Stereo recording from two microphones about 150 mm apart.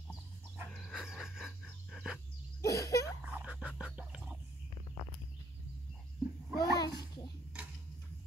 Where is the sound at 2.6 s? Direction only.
20° left (ahead or behind).